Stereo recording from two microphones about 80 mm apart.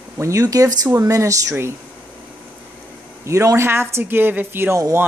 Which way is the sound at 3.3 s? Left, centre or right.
Right.